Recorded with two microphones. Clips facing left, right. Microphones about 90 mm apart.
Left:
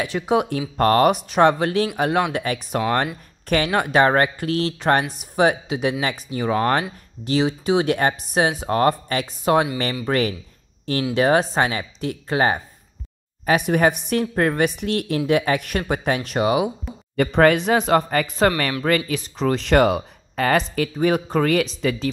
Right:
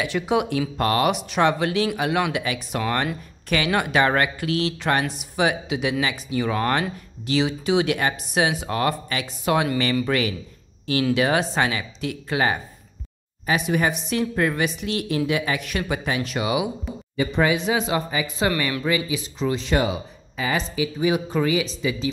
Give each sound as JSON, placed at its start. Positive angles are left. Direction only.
{"t": 0.0, "sound": "speech", "side_deg": 35}
{"t": 13.5, "sound": "speech", "side_deg": 50}
{"t": 17.2, "sound": "speech", "side_deg": 65}